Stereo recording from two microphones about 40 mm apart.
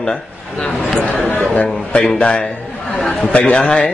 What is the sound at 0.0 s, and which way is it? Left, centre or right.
Speech, left.